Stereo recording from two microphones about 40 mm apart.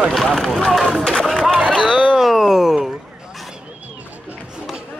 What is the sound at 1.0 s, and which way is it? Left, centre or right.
Speech, centre.